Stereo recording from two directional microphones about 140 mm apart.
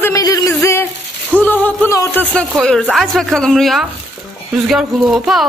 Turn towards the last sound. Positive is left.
turn(degrees=0)  # may be behind; listen again after turning